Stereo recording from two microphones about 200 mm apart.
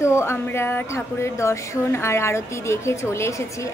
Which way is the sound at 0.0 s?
15° left (ahead or behind).